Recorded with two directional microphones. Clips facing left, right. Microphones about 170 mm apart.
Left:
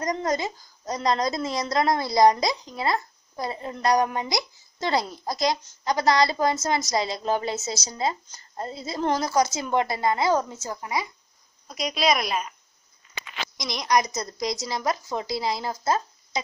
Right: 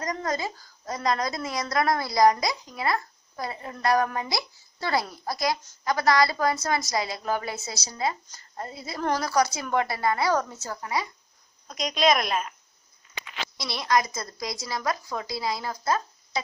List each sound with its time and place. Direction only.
0.0 s a woman's voice: 20° left (ahead or behind)
11.6 s a woman's voice: 5° left (ahead or behind)
13.6 s a woman's voice: 15° left (ahead or behind)